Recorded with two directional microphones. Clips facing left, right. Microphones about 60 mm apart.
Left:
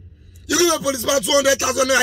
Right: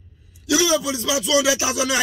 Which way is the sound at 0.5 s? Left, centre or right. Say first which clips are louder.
Left 2 dB; left.